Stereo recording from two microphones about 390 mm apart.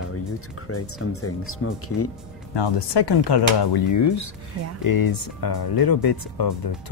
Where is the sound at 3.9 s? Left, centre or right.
Left.